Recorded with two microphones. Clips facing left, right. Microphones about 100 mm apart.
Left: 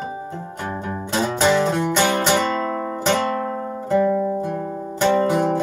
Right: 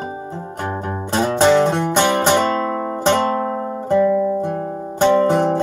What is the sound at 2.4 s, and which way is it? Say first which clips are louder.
Guitar: right 3 dB; 40° right (ahead or behind).